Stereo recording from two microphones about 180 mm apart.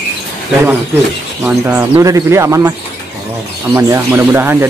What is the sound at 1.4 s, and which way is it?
Speech, 10° right (ahead or behind).